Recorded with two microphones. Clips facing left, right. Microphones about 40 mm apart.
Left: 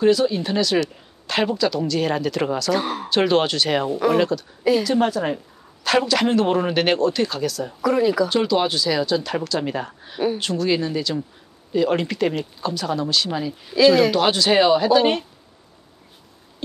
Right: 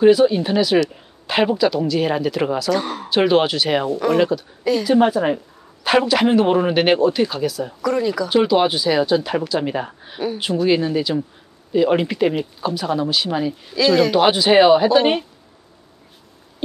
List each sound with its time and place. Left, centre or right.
0.0 s speech: centre
2.7 s speech: centre
3.1 s speech: centre
3.9 s speech: centre
4.8 s speech: centre
7.8 s speech: centre
8.3 s speech: centre
13.7 s speech: centre
14.1 s speech: centre